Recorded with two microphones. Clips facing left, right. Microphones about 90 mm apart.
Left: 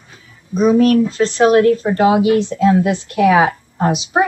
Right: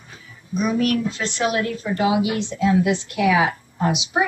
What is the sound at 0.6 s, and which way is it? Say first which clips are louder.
Speech: left 9 dB; 35° left (ahead or behind).